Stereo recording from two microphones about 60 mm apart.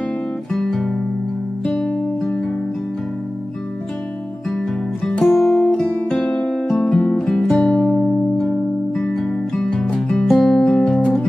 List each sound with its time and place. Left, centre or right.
0.5 s guitar: centre
1.7 s music: centre
4.5 s music: centre